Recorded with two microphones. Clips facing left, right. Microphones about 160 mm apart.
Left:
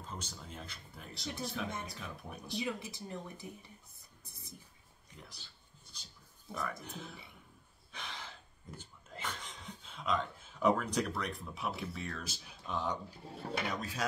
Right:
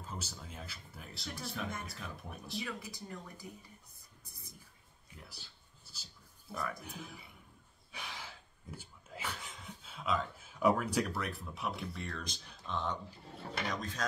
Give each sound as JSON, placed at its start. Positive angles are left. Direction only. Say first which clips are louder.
{"t": 0.0, "sound": "speech", "louder": "even", "side_deg": -5}
{"t": 2.6, "sound": "speech", "louder": "left 4 dB", "side_deg": 25}
{"t": 5.1, "sound": "speech", "louder": "even", "side_deg": -5}
{"t": 5.9, "sound": "a sound", "louder": "right 1 dB", "side_deg": -5}
{"t": 6.5, "sound": "speech", "louder": "even", "side_deg": 0}
{"t": 7.9, "sound": "a sound", "louder": "even", "side_deg": -10}
{"t": 13.7, "sound": "speech", "louder": "even", "side_deg": 10}